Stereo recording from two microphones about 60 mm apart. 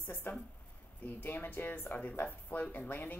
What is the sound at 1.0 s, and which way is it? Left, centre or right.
A woman's voice, left.